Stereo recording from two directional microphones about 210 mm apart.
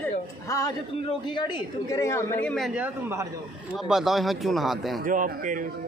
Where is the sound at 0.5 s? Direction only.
15° left (ahead or behind); by 5.0 s centre (ahead or behind).